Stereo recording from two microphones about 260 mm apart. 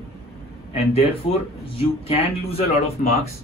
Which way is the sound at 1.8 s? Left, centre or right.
Left.